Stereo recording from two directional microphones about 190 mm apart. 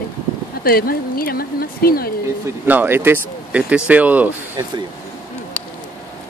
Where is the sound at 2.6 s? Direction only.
10° right (ahead or behind).